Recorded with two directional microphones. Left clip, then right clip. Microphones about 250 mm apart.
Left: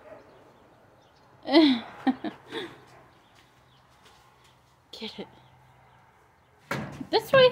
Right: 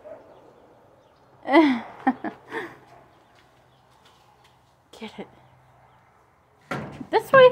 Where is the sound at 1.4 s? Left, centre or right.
Centre.